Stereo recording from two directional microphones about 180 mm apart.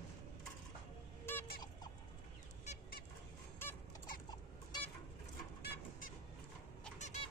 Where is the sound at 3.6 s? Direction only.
10° left (ahead or behind).